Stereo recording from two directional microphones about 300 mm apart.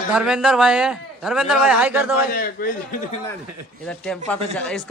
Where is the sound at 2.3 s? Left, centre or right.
Left.